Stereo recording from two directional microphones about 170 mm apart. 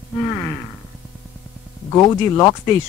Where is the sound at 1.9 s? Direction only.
15° left (ahead or behind).